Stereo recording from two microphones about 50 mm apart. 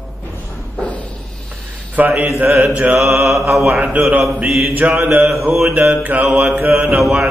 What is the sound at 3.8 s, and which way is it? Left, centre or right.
Mantra, right.